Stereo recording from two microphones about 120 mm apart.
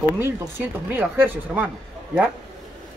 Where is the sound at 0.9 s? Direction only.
15° right (ahead or behind).